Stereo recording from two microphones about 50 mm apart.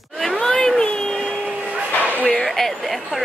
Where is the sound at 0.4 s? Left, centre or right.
Centre.